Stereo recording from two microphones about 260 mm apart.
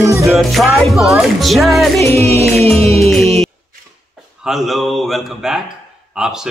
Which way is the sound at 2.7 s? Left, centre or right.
Centre.